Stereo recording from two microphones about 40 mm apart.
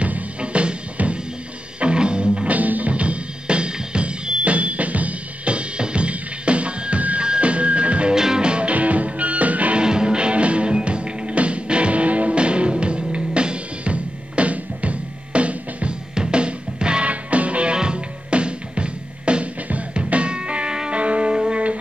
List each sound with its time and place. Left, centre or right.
0.0 s music: right
2.5 s drum kit: right
7.2 s music: right
8.1 s music: centre; by 9.8 s right
9.8 s music: right
20.9 s music: right